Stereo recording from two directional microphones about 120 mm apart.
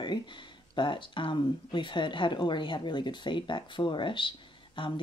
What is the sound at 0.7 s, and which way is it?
Speech, 45° left (ahead or behind).